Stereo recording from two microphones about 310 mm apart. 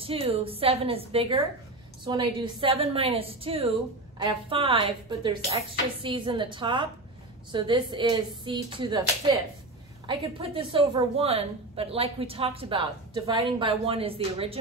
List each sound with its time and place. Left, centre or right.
0.0 s a woman's voice: centre